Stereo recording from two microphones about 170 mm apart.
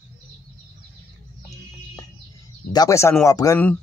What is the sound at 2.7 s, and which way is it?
Speech, 20° left (ahead or behind).